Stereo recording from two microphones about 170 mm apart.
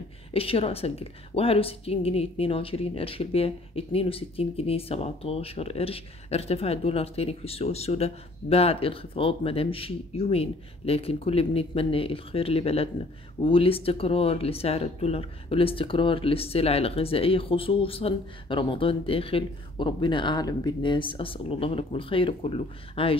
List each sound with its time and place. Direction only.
0.3 s a woman's voice: 35° left (ahead or behind)